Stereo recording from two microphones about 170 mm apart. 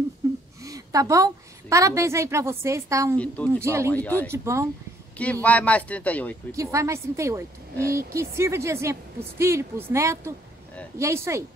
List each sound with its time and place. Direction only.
0.2 s a sound: 15° right (ahead or behind)
0.7 s a woman's voice: 20° right (ahead or behind)
3.2 s speech: 10° left (ahead or behind)
3.6 s a woman's voice: 15° right (ahead or behind)
3.9 s speech: 10° left (ahead or behind)
4.3 s a woman's voice: 15° right (ahead or behind)
5.1 s speech: 10° left (ahead or behind)
6.5 s a woman's voice: 20° right (ahead or behind)